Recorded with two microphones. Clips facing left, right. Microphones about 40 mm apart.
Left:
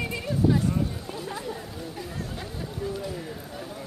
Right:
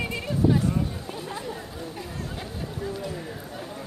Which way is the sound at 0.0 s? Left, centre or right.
Right.